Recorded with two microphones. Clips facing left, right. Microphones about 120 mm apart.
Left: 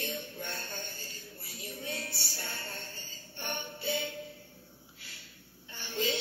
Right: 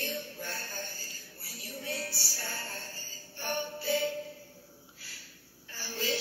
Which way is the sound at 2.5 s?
35° right (ahead or behind).